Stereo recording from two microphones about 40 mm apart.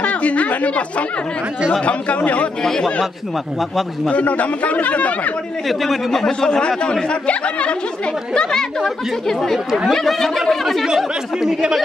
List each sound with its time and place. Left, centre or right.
0.0 s a man's voice: left
2.6 s speech: centre
4.1 s a man's voice: left
5.7 s speech: centre
6.4 s speech: left
8.4 s speech: centre
11.3 s speech: centre